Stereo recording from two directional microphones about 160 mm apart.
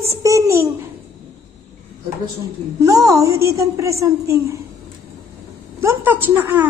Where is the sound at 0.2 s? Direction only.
20° right (ahead or behind).